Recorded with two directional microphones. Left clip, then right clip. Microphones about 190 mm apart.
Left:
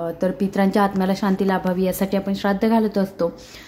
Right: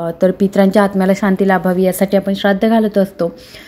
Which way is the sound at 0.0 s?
20° right (ahead or behind).